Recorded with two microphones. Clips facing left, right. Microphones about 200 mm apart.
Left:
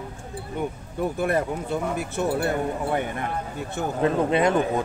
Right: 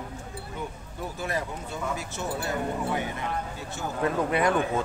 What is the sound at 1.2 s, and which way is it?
Speech, 55° left (ahead or behind).